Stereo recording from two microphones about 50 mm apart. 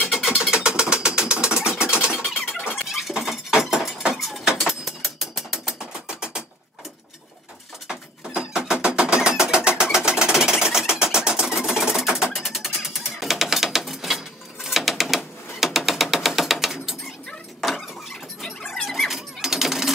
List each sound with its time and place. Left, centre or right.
0.0 s music: centre
0.4 s sewing machine: centre
2.7 s a sound: centre
4.1 s vehicle: centre
4.5 s a sound: centre
5.8 s music: centre
7.9 s music: centre
13.2 s a sound: centre
18.4 s coin: centre